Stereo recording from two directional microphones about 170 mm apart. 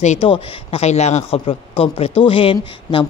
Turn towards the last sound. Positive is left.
turn(degrees=30)  # may be behind; listen again after turning